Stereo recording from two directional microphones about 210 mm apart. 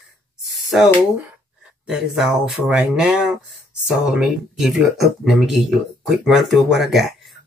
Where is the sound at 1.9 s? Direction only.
Centre (ahead or behind).